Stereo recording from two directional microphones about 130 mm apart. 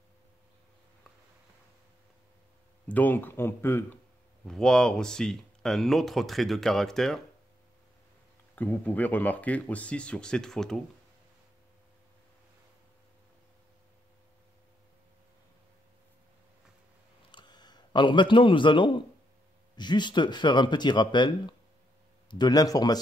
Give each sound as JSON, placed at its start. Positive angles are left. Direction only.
{"t": 2.9, "sound": "speech", "side_deg": 15}
{"t": 4.5, "sound": "speech", "side_deg": 5}
{"t": 8.5, "sound": "speech", "side_deg": 15}
{"t": 17.3, "sound": "a sound", "side_deg": 35}
{"t": 19.7, "sound": "speech", "side_deg": 35}